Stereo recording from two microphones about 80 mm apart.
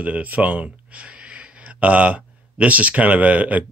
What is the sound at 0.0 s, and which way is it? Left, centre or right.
Speech, centre.